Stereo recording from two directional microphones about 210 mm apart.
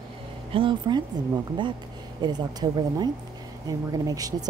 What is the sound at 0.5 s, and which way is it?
Speech, 20° right (ahead or behind).